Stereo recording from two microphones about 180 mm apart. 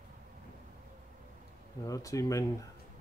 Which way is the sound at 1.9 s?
20° left (ahead or behind).